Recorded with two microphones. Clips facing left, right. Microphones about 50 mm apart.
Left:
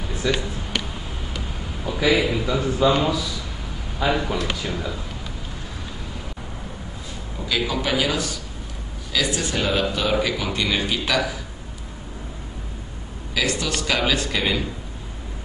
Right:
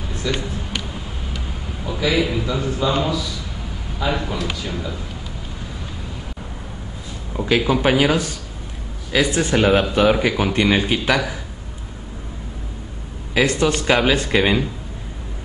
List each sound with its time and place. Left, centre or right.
0.1 s a sound: centre
2.0 s a man's voice: centre
7.3 s speech: right
13.3 s speech: right